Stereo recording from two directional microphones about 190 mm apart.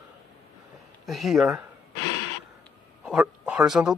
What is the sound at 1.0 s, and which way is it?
Speech, centre (ahead or behind).